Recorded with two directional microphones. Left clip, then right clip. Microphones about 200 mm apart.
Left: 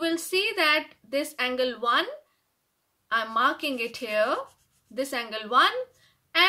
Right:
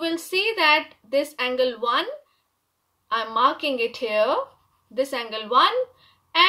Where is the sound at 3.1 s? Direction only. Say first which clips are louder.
Right 3 dB; 20° left (ahead or behind).